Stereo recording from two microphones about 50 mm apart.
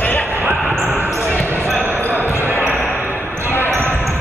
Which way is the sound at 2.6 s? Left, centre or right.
Left.